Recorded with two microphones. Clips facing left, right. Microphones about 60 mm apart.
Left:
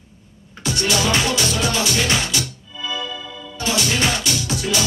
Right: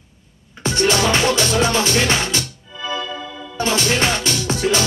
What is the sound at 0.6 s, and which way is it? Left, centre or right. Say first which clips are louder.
Music: right 4 dB; right.